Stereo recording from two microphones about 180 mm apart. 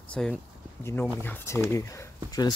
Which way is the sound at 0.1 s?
5° left (ahead or behind).